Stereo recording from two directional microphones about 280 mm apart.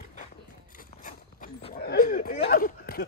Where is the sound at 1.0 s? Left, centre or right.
Left.